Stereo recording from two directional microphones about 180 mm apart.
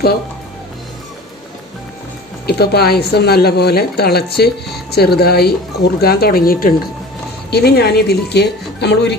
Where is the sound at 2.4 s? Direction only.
60° left (ahead or behind).